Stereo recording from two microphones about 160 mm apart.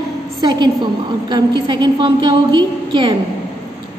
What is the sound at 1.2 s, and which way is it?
A woman's voice, 30° right (ahead or behind).